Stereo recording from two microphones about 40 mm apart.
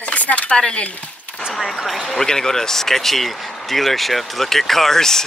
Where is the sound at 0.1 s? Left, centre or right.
Left.